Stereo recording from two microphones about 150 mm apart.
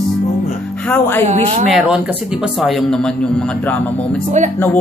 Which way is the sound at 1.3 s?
40° right (ahead or behind).